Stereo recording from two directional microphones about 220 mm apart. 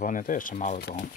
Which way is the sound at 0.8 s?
50° left (ahead or behind).